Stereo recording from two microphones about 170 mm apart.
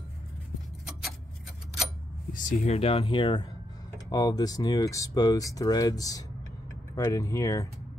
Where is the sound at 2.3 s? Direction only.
50° left (ahead or behind); by 7.7 s 20° left (ahead or behind).